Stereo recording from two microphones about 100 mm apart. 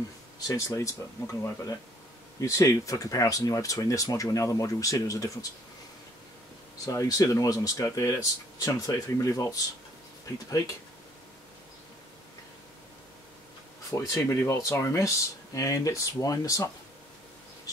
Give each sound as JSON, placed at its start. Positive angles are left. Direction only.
{"t": 0.4, "sound": "speech", "side_deg": 35}
{"t": 6.9, "sound": "speech", "side_deg": 35}
{"t": 13.8, "sound": "speech", "side_deg": 30}